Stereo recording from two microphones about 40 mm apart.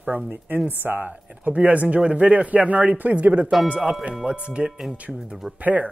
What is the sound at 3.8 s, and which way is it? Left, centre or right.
Speech, right.